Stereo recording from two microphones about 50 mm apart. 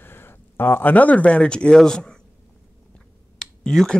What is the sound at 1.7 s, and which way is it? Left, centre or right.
Speech, centre.